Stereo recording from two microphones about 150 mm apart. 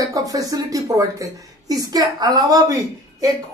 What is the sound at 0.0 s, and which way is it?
Speech, 25° right (ahead or behind).